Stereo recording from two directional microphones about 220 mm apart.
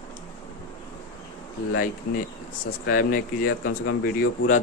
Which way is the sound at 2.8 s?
40° left (ahead or behind).